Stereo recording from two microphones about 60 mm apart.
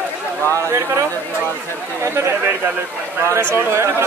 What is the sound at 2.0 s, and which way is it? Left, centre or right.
Speech, right.